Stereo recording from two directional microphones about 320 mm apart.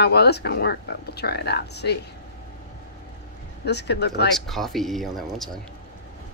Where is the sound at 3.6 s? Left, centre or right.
Left.